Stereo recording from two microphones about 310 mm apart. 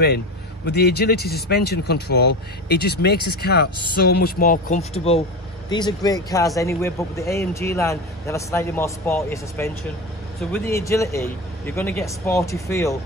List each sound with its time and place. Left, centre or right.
0.7 s speech: left; by 12.9 s centre